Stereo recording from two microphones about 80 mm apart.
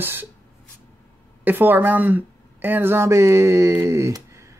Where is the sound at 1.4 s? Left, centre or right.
Right.